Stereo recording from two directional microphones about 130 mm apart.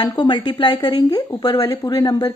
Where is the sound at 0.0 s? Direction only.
35° left (ahead or behind).